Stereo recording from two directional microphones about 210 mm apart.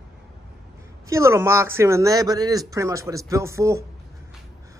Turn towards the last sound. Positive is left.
turn(degrees=-15)  # may be behind; listen again after turning